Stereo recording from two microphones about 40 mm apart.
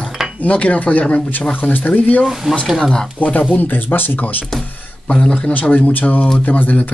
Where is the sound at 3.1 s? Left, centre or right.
Left.